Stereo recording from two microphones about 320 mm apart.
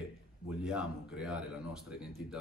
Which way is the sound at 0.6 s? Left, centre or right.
Centre.